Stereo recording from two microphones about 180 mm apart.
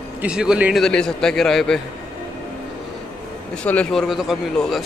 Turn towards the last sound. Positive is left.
turn(degrees=0)  # may be behind; listen again after turning